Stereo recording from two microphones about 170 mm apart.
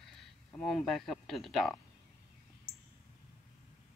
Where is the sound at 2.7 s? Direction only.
65° right (ahead or behind).